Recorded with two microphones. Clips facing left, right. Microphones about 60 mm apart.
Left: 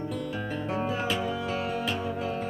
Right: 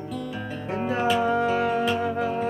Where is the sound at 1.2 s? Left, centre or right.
Right.